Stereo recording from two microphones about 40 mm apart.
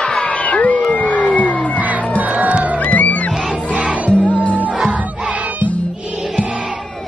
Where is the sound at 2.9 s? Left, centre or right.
Left.